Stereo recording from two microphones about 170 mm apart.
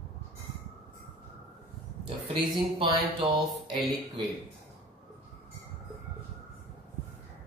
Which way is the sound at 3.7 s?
30° right (ahead or behind).